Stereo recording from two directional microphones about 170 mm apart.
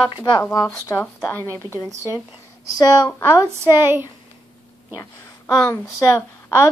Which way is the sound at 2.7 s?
25° left (ahead or behind).